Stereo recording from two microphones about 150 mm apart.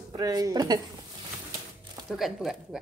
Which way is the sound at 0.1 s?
25° right (ahead or behind).